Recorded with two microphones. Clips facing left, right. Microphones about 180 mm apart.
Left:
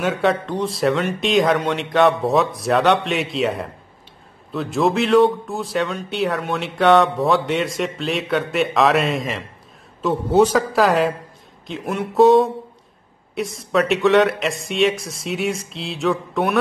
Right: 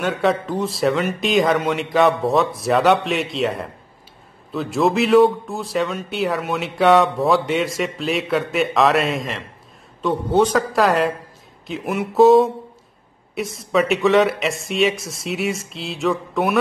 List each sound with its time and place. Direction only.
0.0 s a man's voice: centre (ahead or behind)